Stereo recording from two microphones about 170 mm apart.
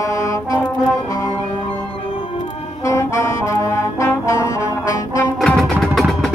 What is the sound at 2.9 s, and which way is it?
Brass instrument, 15° left (ahead or behind).